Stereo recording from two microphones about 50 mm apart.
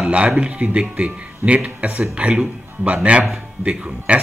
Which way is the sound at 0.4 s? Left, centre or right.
Right.